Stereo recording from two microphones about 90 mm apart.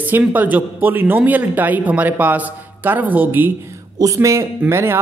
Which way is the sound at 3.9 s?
40° right (ahead or behind).